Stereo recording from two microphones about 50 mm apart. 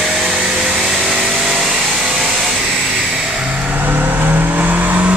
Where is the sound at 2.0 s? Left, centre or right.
Centre.